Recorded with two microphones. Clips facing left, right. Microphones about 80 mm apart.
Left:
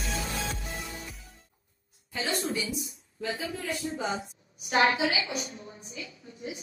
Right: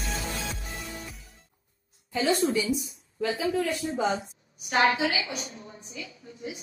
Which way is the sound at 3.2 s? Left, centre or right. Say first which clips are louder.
Right 7 dB; right.